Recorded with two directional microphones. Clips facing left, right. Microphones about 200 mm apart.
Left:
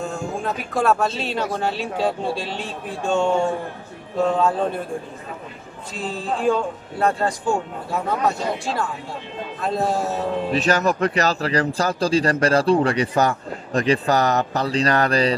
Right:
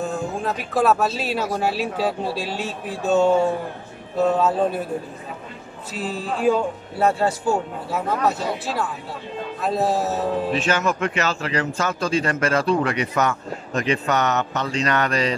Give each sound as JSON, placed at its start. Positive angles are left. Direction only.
{"t": 0.0, "sound": "speech", "side_deg": 0}
{"t": 5.9, "sound": "a man's voice", "side_deg": -5}
{"t": 10.5, "sound": "a man's voice", "side_deg": 40}